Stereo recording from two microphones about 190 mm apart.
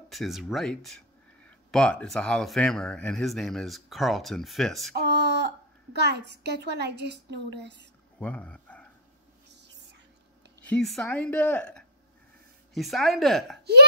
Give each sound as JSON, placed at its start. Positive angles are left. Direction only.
{"t": 0.1, "sound": "speech", "side_deg": 0}
{"t": 5.0, "sound": "a sound", "side_deg": -60}
{"t": 5.9, "sound": "a woman's voice", "side_deg": -60}
{"t": 8.2, "sound": "speech", "side_deg": 5}
{"t": 10.6, "sound": "speech", "side_deg": 5}